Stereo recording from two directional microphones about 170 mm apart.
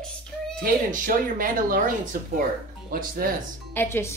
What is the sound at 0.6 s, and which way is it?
Speech, 50° right (ahead or behind).